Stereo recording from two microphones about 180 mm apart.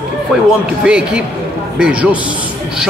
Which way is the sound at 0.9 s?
5° right (ahead or behind).